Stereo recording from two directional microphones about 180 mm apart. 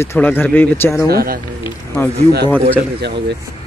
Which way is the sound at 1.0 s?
55° right (ahead or behind).